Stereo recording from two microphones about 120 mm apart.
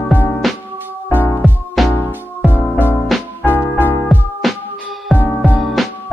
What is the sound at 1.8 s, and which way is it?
Music, centre (ahead or behind).